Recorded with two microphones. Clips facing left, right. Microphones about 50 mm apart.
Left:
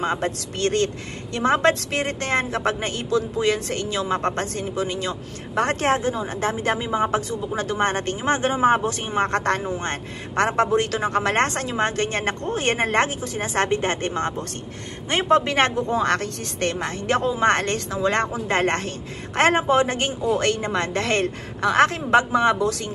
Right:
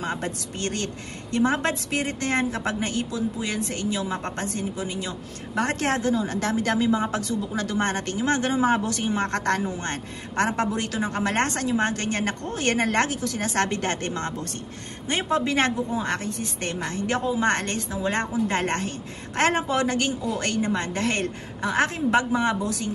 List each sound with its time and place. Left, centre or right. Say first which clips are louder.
0.0 s a woman's voice: left 5 dB; left
3.1 s a woman's voice: left 7 dB; left
15.0 s a woman's voice: left 5 dB; left
15.9 s speech: left 6 dB; left
16.6 s a woman's voice: left 5 dB; left
17.7 s a woman's voice: left 4 dB; left
18.2 s a woman's voice: left 3 dB; left
21.8 s a woman's voice: left 4 dB; left
22.6 s a woman's voice: left 5 dB; left